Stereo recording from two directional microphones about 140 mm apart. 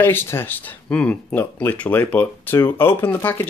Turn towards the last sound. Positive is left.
turn(degrees=15)  # may be behind; listen again after turning